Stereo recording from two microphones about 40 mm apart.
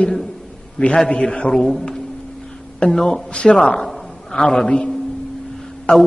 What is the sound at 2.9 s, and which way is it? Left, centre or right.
Speech, centre.